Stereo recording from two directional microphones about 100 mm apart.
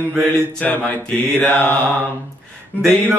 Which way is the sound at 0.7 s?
15° left (ahead or behind).